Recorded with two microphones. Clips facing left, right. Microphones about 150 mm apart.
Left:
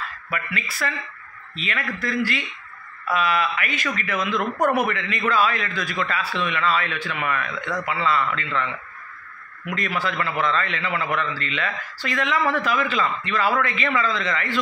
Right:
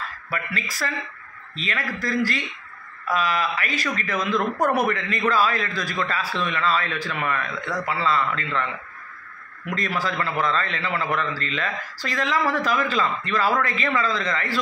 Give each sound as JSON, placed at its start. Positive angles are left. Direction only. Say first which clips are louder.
{"t": 0.3, "sound": "a man's voice", "louder": "even", "side_deg": -35}
{"t": 9.7, "sound": "a man's voice", "louder": "even", "side_deg": -35}